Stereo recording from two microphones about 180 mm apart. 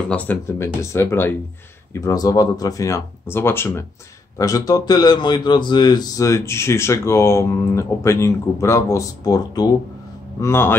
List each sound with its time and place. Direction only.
0.1 s a man's voice: 10° left (ahead or behind)